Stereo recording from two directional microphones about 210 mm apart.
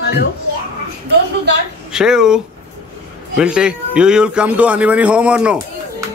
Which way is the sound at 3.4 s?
5° right (ahead or behind).